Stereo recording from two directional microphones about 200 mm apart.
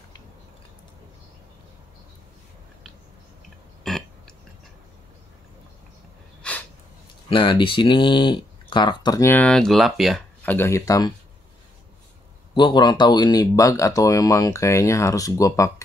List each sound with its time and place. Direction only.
3.9 s burping: centre (ahead or behind)
6.4 s a sound: 5° left (ahead or behind)
7.2 s speech: 25° left (ahead or behind)
12.5 s speech: 20° left (ahead or behind)